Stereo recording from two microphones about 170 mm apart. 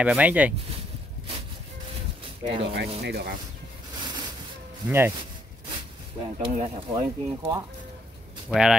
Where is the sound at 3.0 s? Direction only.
70° right (ahead or behind).